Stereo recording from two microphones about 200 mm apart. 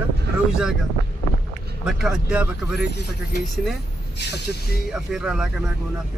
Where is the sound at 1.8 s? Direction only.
5° right (ahead or behind).